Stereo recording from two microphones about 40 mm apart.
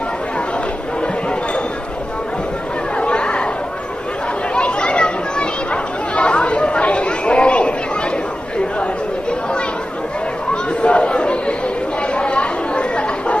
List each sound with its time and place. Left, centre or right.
3.0 s chatter: left
4.6 s chatter: left
10.8 s chatter: left